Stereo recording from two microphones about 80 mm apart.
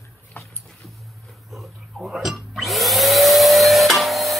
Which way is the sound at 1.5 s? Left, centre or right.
Centre.